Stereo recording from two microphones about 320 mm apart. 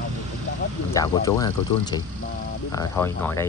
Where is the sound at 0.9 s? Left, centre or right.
Centre.